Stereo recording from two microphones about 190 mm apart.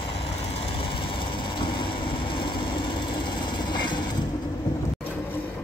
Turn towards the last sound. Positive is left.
turn(degrees=25)  # may be behind; listen again after turning